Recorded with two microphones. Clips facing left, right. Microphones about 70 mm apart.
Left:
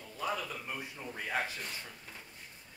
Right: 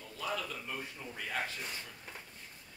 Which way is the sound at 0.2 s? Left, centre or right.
Centre.